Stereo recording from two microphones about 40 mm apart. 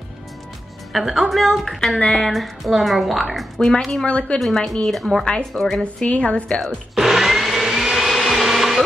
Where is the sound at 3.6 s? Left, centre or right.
Left.